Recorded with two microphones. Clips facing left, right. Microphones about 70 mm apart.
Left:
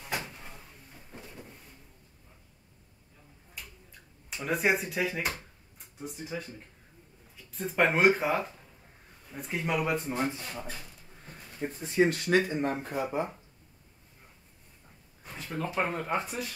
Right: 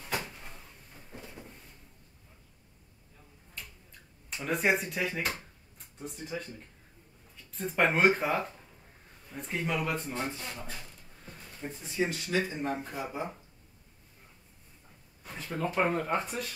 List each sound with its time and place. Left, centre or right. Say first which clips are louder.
0.3 s a sound: left 1 dB; centre
4.4 s speech: left 1 dB; centre
7.5 s speech: left 1 dB; centre
9.8 s speech: left 4 dB; centre
11.8 s speech: left 7 dB; left
15.2 s speech: right 1 dB; centre